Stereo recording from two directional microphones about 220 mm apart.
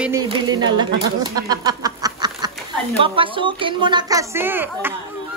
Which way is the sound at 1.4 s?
15° right (ahead or behind).